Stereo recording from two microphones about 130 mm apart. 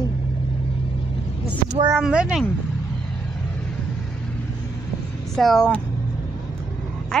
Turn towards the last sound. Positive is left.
turn(degrees=5)  # may be behind; listen again after turning